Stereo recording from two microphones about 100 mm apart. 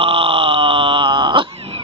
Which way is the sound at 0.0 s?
65° right (ahead or behind).